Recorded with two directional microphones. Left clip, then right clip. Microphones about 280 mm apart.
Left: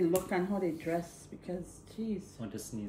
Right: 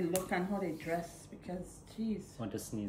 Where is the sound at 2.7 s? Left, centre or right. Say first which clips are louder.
Right 2 dB; centre.